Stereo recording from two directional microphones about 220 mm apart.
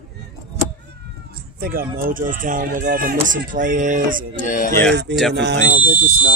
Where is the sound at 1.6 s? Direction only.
40° right (ahead or behind).